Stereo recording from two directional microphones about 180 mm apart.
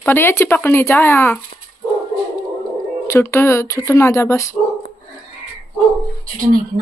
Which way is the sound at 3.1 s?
15° left (ahead or behind).